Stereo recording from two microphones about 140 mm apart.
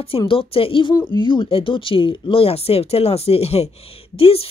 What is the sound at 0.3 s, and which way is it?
Speech, 40° left (ahead or behind).